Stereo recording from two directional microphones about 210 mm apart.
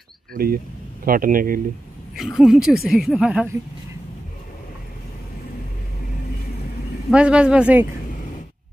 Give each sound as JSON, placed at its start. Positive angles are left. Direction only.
{"t": 0.3, "sound": "speech", "side_deg": -45}
{"t": 2.1, "sound": "speech", "side_deg": 0}
{"t": 7.1, "sound": "speech", "side_deg": -5}